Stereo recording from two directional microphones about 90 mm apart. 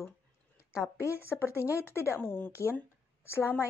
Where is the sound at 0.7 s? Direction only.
30° left (ahead or behind).